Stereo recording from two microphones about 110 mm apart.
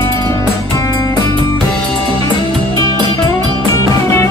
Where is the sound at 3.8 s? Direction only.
25° left (ahead or behind).